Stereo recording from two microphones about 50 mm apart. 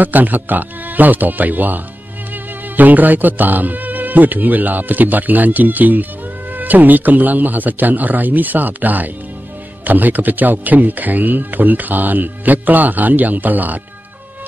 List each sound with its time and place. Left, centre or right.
0.0 s speech: right